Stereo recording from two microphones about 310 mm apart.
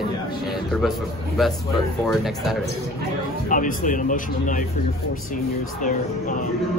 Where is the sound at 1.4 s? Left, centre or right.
Centre.